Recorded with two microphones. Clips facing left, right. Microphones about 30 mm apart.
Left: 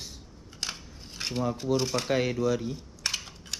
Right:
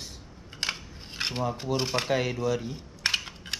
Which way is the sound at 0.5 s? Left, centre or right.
Right.